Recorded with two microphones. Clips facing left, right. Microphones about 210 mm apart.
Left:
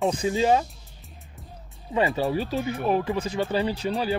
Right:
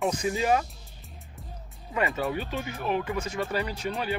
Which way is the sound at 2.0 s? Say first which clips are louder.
Left 5 dB; 30° left (ahead or behind).